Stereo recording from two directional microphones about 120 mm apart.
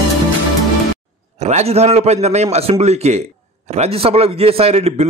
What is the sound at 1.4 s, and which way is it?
Speech, 65° right (ahead or behind).